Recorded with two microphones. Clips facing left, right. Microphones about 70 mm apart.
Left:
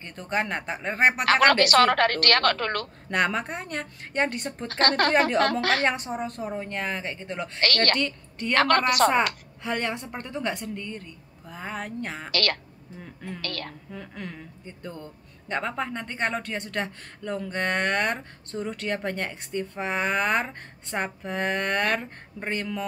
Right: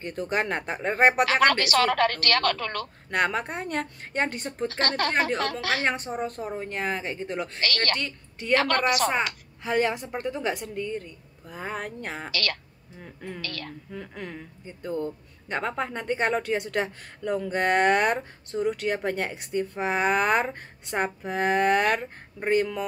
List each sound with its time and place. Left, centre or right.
0.0 s a woman's voice: centre
1.2 s a woman's voice: left
3.1 s a woman's voice: centre
4.6 s a woman's voice: left
5.9 s a woman's voice: centre
7.6 s a woman's voice: left
8.0 s a woman's voice: centre
8.5 s a woman's voice: left
9.6 s a woman's voice: centre
12.3 s a woman's voice: left
13.0 s a woman's voice: centre
13.4 s a woman's voice: left
13.9 s speech: centre